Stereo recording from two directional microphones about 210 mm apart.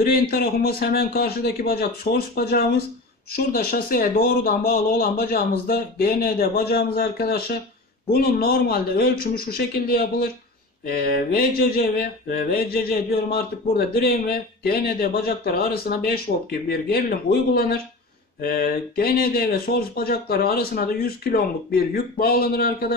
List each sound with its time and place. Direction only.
0.0 s mantra: 45° left (ahead or behind)